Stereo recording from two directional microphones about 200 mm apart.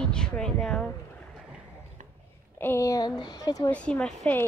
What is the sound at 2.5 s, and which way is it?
Speech, 10° left (ahead or behind).